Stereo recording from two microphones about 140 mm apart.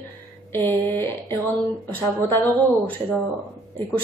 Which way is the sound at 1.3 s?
15° left (ahead or behind).